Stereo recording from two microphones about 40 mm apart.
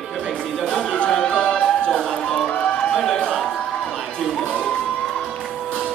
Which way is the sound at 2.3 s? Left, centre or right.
Left.